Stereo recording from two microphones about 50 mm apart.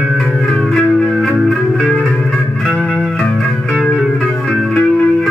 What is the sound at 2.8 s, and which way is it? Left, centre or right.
Music, left.